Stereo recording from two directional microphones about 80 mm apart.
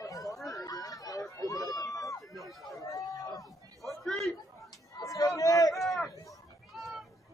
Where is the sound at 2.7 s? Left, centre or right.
Left.